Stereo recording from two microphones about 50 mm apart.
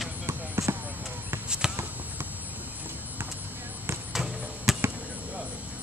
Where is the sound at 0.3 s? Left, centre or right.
Right.